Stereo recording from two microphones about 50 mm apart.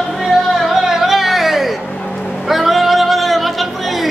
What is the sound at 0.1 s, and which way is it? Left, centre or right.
Music, centre.